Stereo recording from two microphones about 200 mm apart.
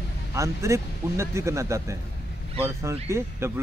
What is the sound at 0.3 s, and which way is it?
Speech, 15° right (ahead or behind).